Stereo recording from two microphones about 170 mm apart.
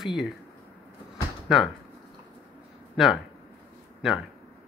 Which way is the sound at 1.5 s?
Centre (ahead or behind).